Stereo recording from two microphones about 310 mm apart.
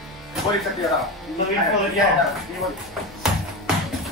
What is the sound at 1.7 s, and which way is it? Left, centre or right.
Speech, centre.